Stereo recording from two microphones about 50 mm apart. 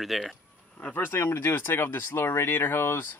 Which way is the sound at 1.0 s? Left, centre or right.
Left.